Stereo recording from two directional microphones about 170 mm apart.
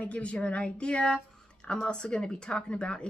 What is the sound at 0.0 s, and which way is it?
Speech, 5° left (ahead or behind).